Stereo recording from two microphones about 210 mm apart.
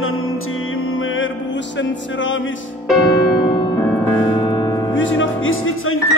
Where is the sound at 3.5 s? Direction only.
20° left (ahead or behind).